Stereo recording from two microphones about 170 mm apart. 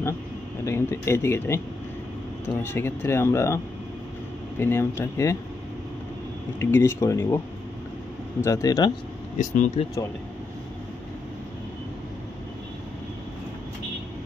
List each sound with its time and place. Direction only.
0.7 s speech: 15° left (ahead or behind)
2.6 s speech: 15° left (ahead or behind)
6.6 s speech: 15° left (ahead or behind)
8.4 s speech: 20° left (ahead or behind)
9.4 s speech: 45° left (ahead or behind)